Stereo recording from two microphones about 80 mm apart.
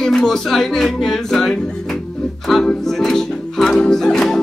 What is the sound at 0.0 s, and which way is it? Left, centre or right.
Speech, centre.